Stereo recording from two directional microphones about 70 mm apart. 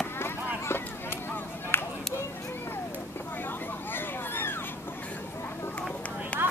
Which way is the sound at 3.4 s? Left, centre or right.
Left.